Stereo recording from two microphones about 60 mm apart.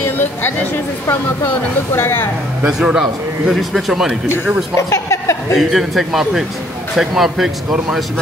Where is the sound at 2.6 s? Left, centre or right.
Centre.